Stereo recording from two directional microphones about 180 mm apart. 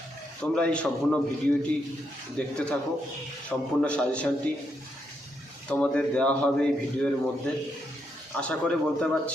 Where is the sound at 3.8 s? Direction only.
5° left (ahead or behind).